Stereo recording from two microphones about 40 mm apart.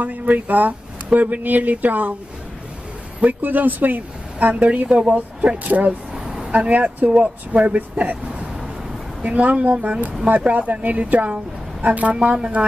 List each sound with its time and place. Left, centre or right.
0.0 s speech: right
3.3 s speech: right
6.1 s a sound: centre
6.5 s speech: right
9.2 s a woman's voice: right